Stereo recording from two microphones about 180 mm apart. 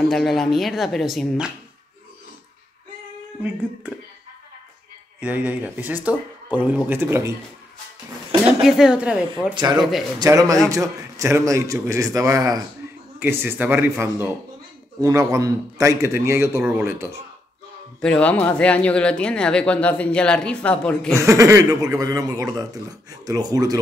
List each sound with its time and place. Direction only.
0.1 s speech: centre (ahead or behind)
5.2 s speech: 10° right (ahead or behind)
8.6 s speech: 5° right (ahead or behind)
9.5 s speech: 25° right (ahead or behind)
9.8 s speech: centre (ahead or behind)
10.1 s speech: 20° right (ahead or behind)
18.0 s speech: 10° left (ahead or behind)
21.2 s speech: 15° right (ahead or behind)